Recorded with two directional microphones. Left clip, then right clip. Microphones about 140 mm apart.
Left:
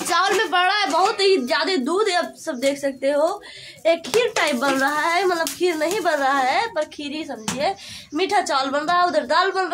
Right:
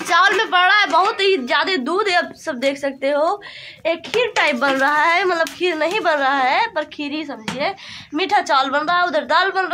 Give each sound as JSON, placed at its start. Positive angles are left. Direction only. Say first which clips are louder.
{"t": 0.0, "sound": "a woman's voice", "louder": "right 4 dB", "side_deg": -20}
{"t": 2.6, "sound": "a woman's voice", "louder": "right 1 dB", "side_deg": -45}
{"t": 3.8, "sound": "a woman's voice", "louder": "left 1 dB", "side_deg": -15}